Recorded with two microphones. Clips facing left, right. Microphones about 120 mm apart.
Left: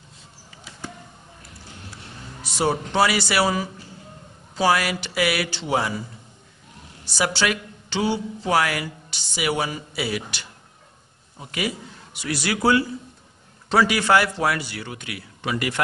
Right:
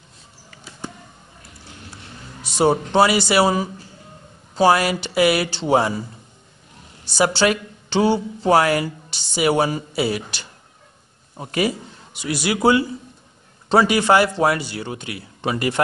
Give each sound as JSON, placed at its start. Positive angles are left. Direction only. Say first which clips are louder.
{"t": 2.4, "sound": "speech", "louder": "right 5 dB", "side_deg": -25}
{"t": 7.2, "sound": "a woman's voice", "louder": "right 5 dB", "side_deg": -30}
{"t": 12.1, "sound": "speech", "louder": "right 3 dB", "side_deg": -20}